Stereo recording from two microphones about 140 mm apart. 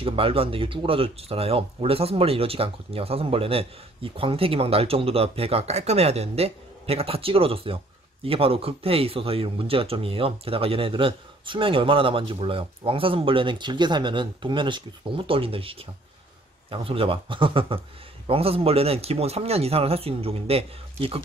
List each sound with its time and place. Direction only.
0.0 s a man's voice: 40° right (ahead or behind)